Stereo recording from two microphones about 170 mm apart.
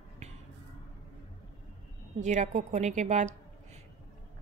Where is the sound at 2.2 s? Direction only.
45° right (ahead or behind).